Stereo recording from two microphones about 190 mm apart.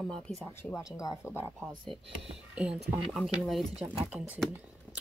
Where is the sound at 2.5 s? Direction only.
5° right (ahead or behind).